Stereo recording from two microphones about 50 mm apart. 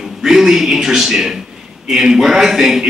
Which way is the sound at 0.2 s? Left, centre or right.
Centre.